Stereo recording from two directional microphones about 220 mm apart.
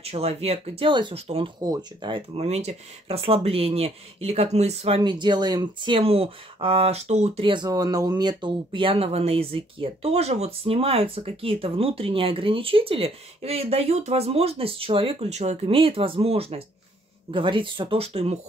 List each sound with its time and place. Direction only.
0.0 s speech: 25° right (ahead or behind)